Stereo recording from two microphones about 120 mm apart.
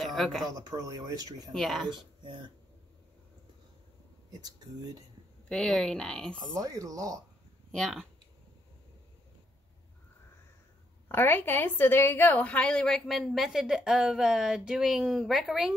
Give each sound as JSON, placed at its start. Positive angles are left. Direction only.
{"t": 0.0, "sound": "speech", "side_deg": 0}
{"t": 0.5, "sound": "speech", "side_deg": -30}
{"t": 1.5, "sound": "a woman's voice", "side_deg": 0}
{"t": 1.9, "sound": "speech", "side_deg": -40}
{"t": 4.3, "sound": "speech", "side_deg": -35}
{"t": 5.5, "sound": "speech", "side_deg": 5}
{"t": 6.6, "sound": "speech", "side_deg": -30}
{"t": 7.7, "sound": "a woman's voice", "side_deg": 5}
{"t": 11.1, "sound": "a woman's voice", "side_deg": 15}